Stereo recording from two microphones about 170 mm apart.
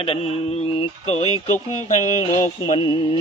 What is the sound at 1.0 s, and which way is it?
Speech, 40° left (ahead or behind).